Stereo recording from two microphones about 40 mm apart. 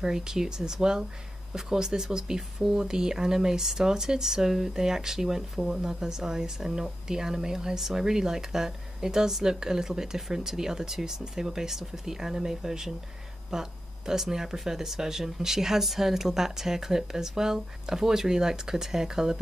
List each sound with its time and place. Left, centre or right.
0.0 s speech: centre